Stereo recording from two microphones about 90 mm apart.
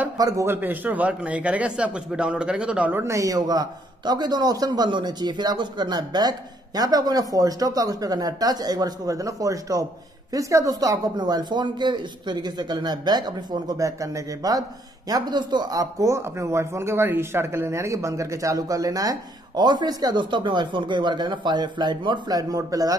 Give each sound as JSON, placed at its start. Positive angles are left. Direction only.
{"t": 0.5, "sound": "a man's voice", "side_deg": -20}
{"t": 2.9, "sound": "a man's voice", "side_deg": -30}
{"t": 15.0, "sound": "a man's voice", "side_deg": -50}